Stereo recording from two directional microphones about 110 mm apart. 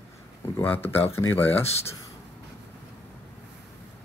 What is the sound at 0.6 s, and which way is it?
Speech, 20° left (ahead or behind).